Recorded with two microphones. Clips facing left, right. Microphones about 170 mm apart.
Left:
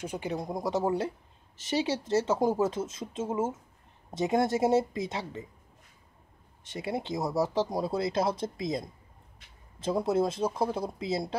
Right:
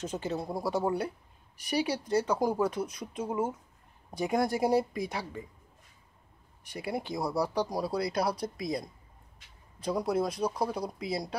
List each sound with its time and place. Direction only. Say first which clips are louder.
0.0 s speech: even; 15° left (ahead or behind)
6.6 s speech: left 1 dB; 20° left (ahead or behind)